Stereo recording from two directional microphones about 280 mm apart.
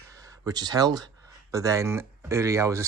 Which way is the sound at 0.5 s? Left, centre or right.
Centre.